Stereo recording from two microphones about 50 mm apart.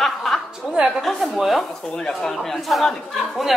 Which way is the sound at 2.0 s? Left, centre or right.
Centre.